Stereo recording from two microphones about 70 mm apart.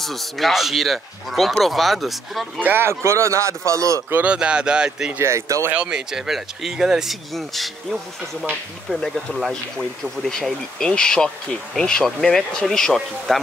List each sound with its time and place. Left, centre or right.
0.0 s speech: centre
2.6 s speech: right
4.1 s speech: centre
5.2 s speech: right
5.7 s speech: centre
8.8 s speech: centre